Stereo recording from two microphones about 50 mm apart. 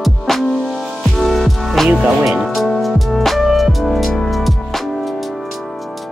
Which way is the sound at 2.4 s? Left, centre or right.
Centre.